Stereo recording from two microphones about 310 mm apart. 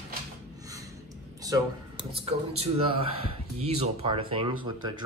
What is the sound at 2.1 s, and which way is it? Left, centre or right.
A man's voice, centre.